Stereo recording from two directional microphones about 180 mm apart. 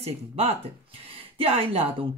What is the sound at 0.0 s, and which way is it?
Speech, 35° right (ahead or behind).